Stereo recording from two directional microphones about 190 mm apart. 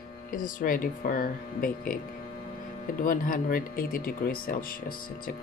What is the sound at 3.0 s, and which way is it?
Speech, 45° left (ahead or behind).